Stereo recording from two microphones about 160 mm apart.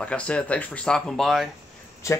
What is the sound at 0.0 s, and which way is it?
Speech, 5° left (ahead or behind).